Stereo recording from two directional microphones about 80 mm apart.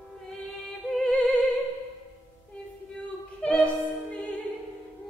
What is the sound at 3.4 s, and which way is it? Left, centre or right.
Opera, centre.